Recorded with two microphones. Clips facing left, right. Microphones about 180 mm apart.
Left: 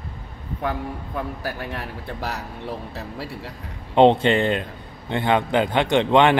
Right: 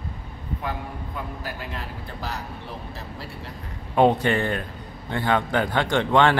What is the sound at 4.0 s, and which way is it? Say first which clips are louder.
A man's voice: left 4 dB; 25° left (ahead or behind).